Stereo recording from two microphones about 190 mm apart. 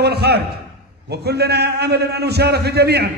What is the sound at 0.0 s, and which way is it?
A man's voice, 60° right (ahead or behind).